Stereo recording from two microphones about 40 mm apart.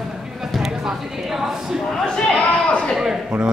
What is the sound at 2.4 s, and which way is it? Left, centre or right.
Speech, left.